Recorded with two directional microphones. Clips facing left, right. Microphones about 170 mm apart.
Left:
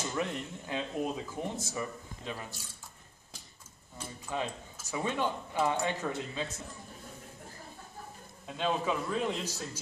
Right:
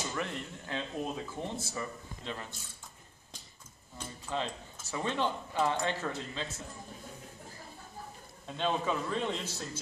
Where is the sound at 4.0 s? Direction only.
10° left (ahead or behind).